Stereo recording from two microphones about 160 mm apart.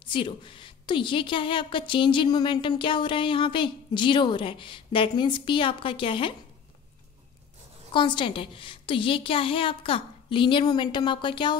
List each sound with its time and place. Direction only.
0.1 s a woman's voice: 30° left (ahead or behind)
7.9 s a woman's voice: 30° left (ahead or behind)